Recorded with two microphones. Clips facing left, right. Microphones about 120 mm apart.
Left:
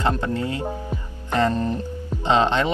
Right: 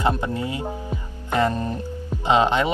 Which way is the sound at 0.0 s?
15° right (ahead or behind).